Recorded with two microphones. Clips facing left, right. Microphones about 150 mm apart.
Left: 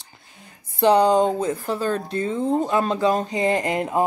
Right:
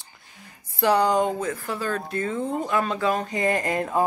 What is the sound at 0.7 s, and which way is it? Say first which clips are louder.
Speech: left 4 dB; 25° left (ahead or behind).